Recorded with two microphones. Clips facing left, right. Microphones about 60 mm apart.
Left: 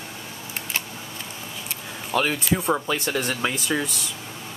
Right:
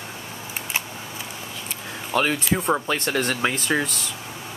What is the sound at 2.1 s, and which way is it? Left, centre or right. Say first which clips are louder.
Speech: right 1 dB; centre.